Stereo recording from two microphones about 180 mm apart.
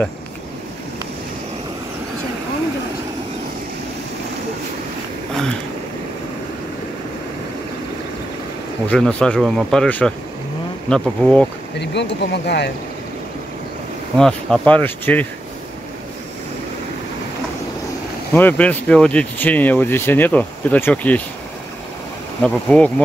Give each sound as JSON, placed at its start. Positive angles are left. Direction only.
{"t": 8.8, "sound": "speech", "side_deg": 5}
{"t": 11.8, "sound": "speech", "side_deg": 70}
{"t": 14.1, "sound": "speech", "side_deg": 5}
{"t": 18.3, "sound": "speech", "side_deg": 10}
{"t": 22.4, "sound": "speech", "side_deg": 5}